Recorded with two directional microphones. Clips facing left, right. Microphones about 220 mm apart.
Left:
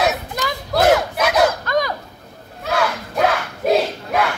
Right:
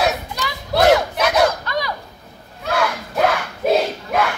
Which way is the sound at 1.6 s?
50° left (ahead or behind).